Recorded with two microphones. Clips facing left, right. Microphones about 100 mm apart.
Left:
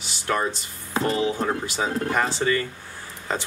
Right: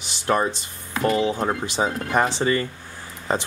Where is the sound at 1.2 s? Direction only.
25° right (ahead or behind).